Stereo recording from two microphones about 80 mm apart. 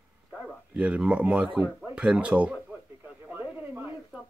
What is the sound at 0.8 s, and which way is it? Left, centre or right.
Speech, centre.